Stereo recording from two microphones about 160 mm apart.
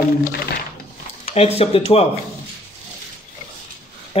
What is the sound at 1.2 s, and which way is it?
Speech, 40° left (ahead or behind).